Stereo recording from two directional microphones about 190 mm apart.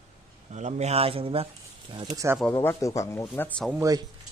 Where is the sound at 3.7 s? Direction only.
15° right (ahead or behind).